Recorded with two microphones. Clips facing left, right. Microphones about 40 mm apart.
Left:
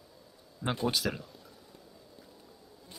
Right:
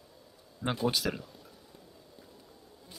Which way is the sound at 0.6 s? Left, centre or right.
Centre.